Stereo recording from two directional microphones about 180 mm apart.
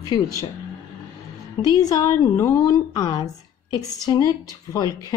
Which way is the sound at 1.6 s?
20° left (ahead or behind).